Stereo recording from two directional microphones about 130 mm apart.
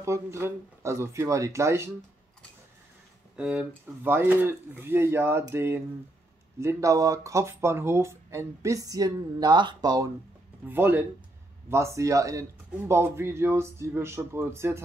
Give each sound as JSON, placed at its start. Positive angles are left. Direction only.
{"t": 0.0, "sound": "speech", "side_deg": -20}
{"t": 3.3, "sound": "speech", "side_deg": -10}
{"t": 10.7, "sound": "speech", "side_deg": -15}